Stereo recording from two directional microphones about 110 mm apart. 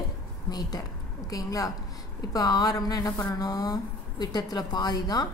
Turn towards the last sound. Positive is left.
turn(degrees=35)  # may be behind; listen again after turning